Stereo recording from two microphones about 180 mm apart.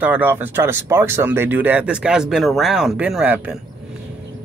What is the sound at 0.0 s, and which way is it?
Speech, 10° right (ahead or behind).